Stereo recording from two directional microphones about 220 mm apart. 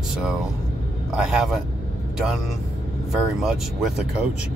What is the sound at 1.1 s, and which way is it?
Speech, 5° right (ahead or behind).